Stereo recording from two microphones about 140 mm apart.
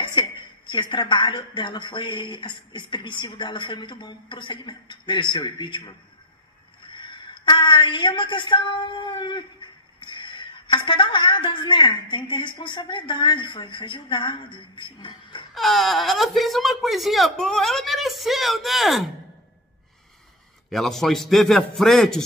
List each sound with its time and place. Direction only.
0.0 s a woman's voice: 35° left (ahead or behind)
6.9 s a woman's voice: 35° left (ahead or behind)
15.5 s speech: centre (ahead or behind)
20.7 s speech: centre (ahead or behind)